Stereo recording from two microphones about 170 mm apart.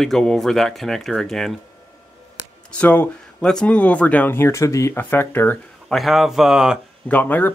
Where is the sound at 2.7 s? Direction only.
10° left (ahead or behind).